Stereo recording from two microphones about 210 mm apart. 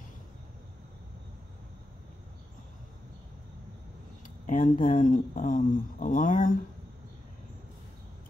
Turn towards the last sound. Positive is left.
turn(degrees=40)  # may be behind; listen again after turning